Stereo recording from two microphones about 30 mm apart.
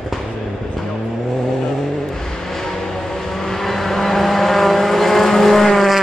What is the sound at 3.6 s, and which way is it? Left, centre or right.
Vehicle, centre.